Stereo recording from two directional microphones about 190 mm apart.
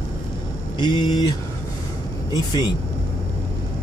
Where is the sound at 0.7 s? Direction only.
25° left (ahead or behind).